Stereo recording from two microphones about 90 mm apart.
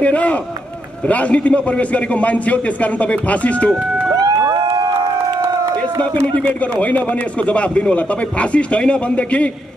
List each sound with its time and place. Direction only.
0.0 s a man's voice: 15° left (ahead or behind)
3.7 s run: 10° right (ahead or behind)
4.2 s a sound: 45° right (ahead or behind)
6.3 s a man's voice: 15° left (ahead or behind)